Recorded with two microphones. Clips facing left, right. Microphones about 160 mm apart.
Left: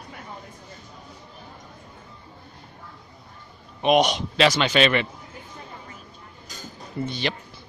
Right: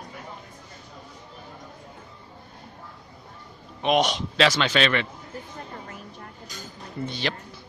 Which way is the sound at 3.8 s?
5° left (ahead or behind).